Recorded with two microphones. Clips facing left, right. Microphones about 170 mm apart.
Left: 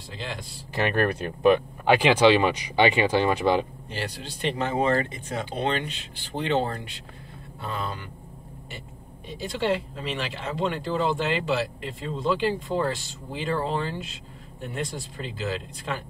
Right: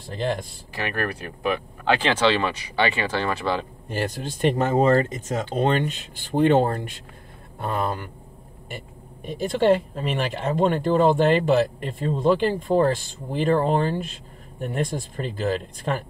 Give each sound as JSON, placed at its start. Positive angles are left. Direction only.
{"t": 0.1, "sound": "speech", "side_deg": -50}
{"t": 0.7, "sound": "speech", "side_deg": 20}
{"t": 3.9, "sound": "speech", "side_deg": -50}
{"t": 9.3, "sound": "speech", "side_deg": -50}